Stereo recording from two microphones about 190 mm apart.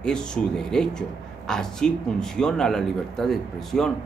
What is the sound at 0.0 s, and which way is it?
A man's voice, 5° left (ahead or behind).